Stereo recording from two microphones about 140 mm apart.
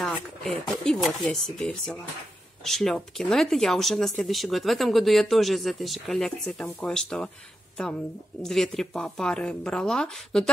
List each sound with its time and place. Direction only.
0.0 s speech: 5° left (ahead or behind)
8.4 s speech: centre (ahead or behind)